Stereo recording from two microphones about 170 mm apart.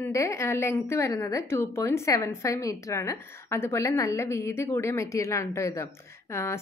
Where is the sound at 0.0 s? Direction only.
15° left (ahead or behind).